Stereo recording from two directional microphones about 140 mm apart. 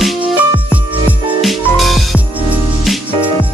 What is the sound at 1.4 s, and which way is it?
Music, centre (ahead or behind).